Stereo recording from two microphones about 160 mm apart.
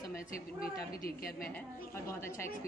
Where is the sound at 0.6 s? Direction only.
65° left (ahead or behind).